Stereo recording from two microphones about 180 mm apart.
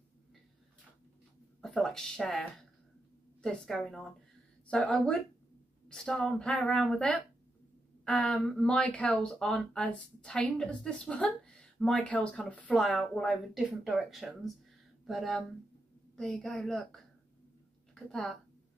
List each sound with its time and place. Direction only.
1.6 s speech: 5° left (ahead or behind)
3.4 s speech: 5° left (ahead or behind)